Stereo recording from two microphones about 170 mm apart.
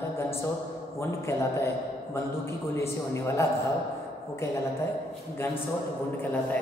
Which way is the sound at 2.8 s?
15° left (ahead or behind).